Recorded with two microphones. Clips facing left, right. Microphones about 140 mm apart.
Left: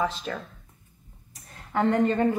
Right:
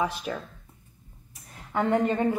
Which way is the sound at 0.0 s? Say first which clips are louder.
Even; 15° right (ahead or behind).